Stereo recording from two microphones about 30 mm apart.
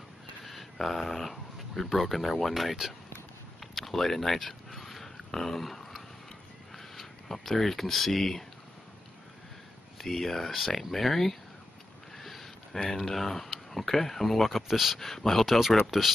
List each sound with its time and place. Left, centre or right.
0.5 s speech: centre
3.7 s speech: centre
4.7 s dog: centre
6.7 s speech: centre
9.9 s speech: centre
12.2 s a sound: centre
12.8 s speech: centre
15.9 s speech: centre